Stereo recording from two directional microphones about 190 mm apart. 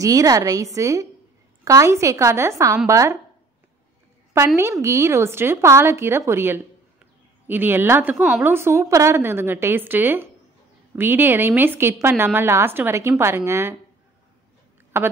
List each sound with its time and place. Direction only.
0.0 s a woman's voice: 20° right (ahead or behind)
4.8 s a woman's voice: 15° right (ahead or behind)
14.9 s a woman's voice: 10° right (ahead or behind)